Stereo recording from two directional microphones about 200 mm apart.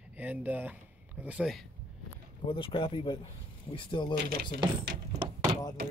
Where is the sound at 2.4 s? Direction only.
25° left (ahead or behind).